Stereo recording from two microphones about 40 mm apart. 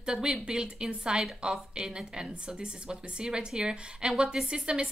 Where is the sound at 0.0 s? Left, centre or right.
Right.